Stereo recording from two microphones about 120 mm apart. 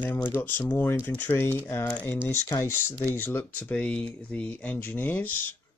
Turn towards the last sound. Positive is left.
turn(degrees=15)  # may be behind; listen again after turning